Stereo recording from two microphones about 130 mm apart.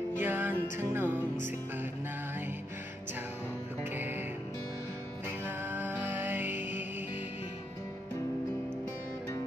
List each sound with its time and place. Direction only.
0.2 s music: 15° right (ahead or behind)
3.8 s music: 15° right (ahead or behind)
5.4 s music: 15° right (ahead or behind)